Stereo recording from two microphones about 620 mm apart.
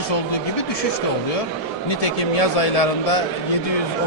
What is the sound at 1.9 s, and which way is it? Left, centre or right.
A man's voice, left.